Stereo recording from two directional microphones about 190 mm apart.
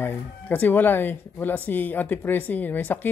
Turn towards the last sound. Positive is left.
turn(degrees=10)  # may be behind; listen again after turning